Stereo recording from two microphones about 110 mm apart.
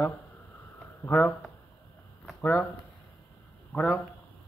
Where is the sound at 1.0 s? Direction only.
20° left (ahead or behind).